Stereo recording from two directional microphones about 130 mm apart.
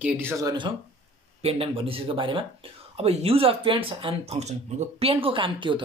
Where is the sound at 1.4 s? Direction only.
50° right (ahead or behind).